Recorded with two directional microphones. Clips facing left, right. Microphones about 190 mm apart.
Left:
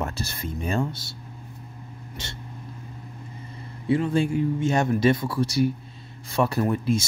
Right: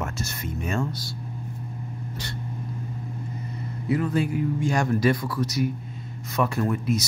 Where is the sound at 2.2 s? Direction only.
25° left (ahead or behind).